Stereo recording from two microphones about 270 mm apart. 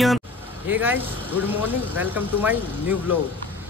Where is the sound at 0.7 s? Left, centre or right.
Centre.